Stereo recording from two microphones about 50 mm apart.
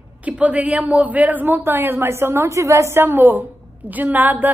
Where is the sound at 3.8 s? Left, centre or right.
Right.